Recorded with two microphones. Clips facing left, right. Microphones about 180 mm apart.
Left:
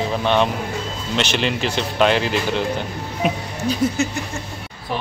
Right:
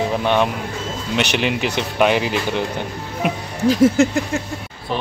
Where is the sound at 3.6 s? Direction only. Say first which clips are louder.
Right 7 dB; 90° right.